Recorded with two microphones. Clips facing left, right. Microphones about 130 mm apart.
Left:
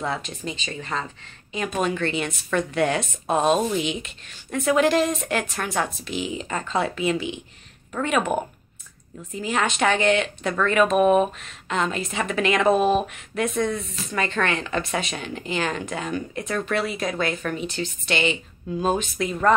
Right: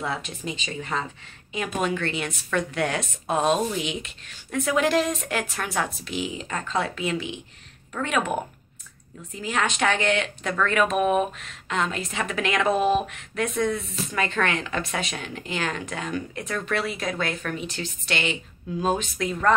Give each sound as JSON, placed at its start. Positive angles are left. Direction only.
{"t": 0.0, "sound": "speech", "side_deg": -5}
{"t": 9.4, "sound": "speech", "side_deg": 0}